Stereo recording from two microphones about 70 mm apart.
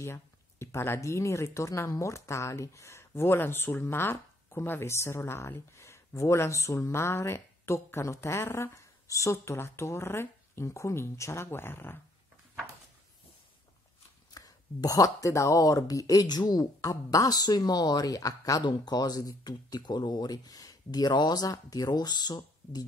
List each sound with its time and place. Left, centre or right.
0.0 s speech: left
9.0 s speech: left
14.3 s speech: left
16.3 s speech: left